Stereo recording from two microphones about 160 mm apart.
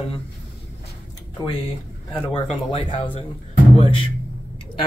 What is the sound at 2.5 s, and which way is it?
Speech, 35° left (ahead or behind).